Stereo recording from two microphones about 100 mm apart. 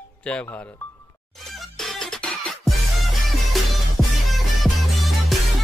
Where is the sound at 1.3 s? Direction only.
Centre (ahead or behind).